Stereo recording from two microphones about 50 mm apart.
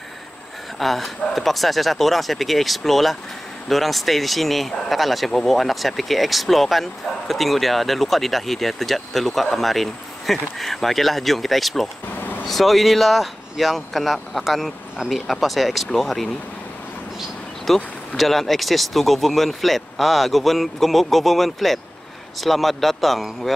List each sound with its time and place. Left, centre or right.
0.7 s speech: centre
12.2 s vehicle: left
12.4 s speech: centre
17.7 s speech: centre